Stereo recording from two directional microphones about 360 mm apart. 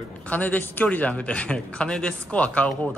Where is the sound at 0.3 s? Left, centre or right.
Centre.